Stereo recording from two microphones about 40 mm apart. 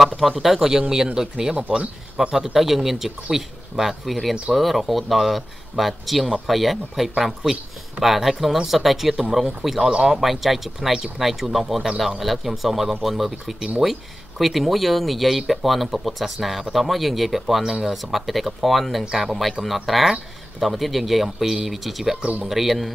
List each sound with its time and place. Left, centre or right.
0.2 s speech: centre
2.3 s speech: centre
9.8 s speech: centre
10.1 s speech: centre
22.2 s speech: right
22.5 s speech: centre